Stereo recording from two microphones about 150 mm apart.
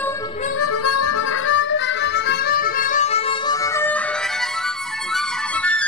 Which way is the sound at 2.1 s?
90° left.